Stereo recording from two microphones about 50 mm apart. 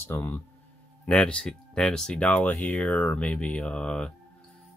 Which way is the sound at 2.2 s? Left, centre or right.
Left.